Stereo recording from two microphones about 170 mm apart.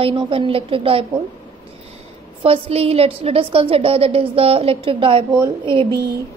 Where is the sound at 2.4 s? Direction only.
35° right (ahead or behind).